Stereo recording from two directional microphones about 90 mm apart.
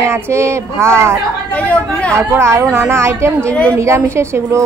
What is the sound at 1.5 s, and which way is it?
Chatter, 15° left (ahead or behind).